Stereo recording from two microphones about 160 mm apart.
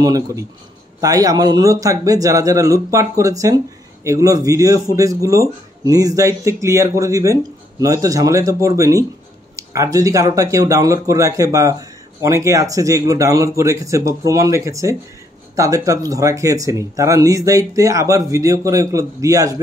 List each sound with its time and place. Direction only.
0.0 s speech: 20° right (ahead or behind)